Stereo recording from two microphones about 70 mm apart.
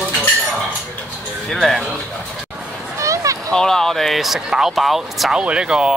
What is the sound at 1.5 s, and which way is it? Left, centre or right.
Speech, centre.